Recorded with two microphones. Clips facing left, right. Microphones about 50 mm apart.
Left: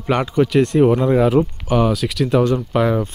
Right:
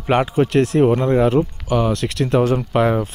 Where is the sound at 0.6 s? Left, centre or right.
Centre.